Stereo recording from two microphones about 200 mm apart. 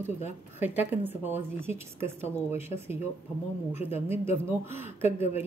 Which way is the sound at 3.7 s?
10° right (ahead or behind).